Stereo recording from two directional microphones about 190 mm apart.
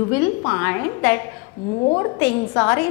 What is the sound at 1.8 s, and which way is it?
Speech, 25° left (ahead or behind).